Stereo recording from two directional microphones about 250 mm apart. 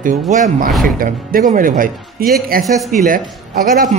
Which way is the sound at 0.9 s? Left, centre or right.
Right.